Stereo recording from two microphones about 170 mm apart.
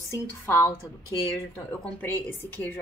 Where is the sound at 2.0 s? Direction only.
10° left (ahead or behind).